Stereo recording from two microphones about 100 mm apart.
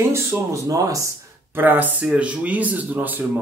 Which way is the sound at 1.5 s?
20° right (ahead or behind).